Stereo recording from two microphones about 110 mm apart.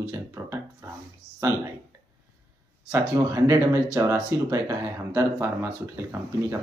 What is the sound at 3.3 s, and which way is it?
Speech, 25° right (ahead or behind).